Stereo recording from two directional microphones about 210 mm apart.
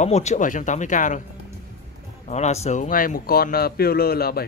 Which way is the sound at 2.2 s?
35° left (ahead or behind).